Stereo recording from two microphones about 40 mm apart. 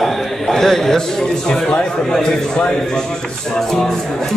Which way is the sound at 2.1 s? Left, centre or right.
Centre.